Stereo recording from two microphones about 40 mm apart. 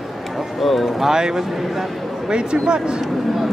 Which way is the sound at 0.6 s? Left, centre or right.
Centre.